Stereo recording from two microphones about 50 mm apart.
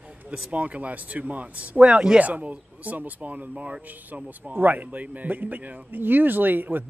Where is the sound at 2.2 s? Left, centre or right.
Right.